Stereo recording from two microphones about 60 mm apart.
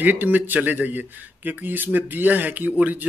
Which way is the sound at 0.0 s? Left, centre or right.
Right.